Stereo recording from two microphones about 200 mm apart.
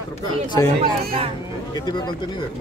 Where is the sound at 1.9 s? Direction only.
20° left (ahead or behind).